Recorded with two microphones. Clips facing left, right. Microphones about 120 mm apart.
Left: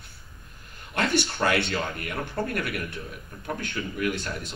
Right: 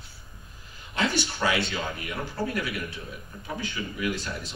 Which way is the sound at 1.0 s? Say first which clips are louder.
Left 2 dB; 60° left (ahead or behind).